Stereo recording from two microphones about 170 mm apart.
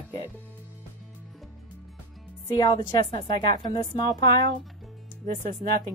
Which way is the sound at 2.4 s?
25° left (ahead or behind).